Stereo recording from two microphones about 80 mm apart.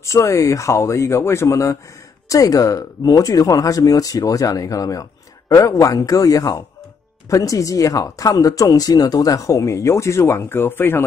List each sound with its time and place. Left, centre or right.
0.0 s speech: left